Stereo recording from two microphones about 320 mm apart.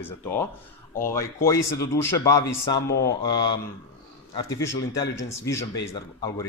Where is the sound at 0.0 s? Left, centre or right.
Centre.